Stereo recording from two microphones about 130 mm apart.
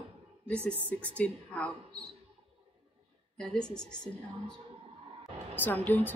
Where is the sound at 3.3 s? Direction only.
5° left (ahead or behind).